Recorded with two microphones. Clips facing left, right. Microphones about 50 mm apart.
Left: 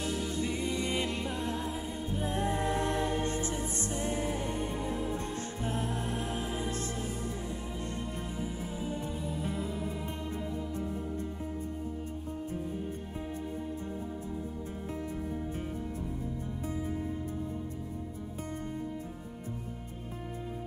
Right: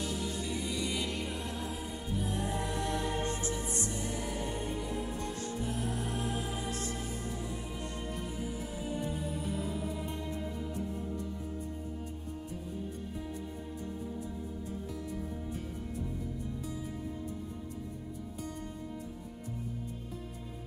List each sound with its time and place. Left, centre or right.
0.4 s music: left